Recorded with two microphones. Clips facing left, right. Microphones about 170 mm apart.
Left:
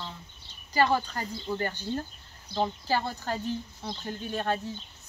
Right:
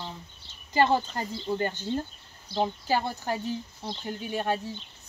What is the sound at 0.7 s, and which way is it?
A woman's voice, 20° right (ahead or behind).